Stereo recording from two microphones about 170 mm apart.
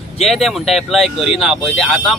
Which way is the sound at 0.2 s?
Centre (ahead or behind).